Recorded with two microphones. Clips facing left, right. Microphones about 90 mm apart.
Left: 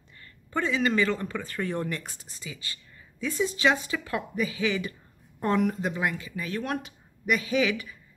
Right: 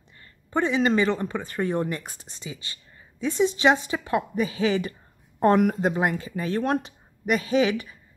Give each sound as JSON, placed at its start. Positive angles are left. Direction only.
{"t": 0.5, "sound": "speech", "side_deg": -20}
{"t": 5.4, "sound": "speech", "side_deg": -50}
{"t": 5.8, "sound": "speech", "side_deg": -40}